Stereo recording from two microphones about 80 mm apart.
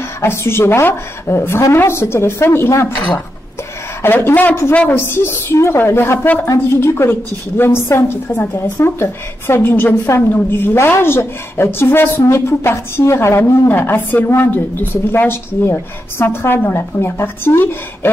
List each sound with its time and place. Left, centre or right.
0.2 s a woman's voice: left
4.0 s a woman's voice: left
6.1 s a woman's voice: centre
6.4 s a woman's voice: left